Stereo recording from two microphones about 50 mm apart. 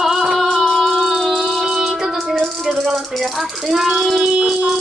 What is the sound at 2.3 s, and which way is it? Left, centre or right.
Rattle, centre.